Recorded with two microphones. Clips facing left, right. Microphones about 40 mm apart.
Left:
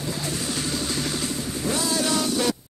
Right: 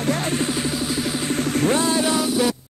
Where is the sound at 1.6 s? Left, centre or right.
Right.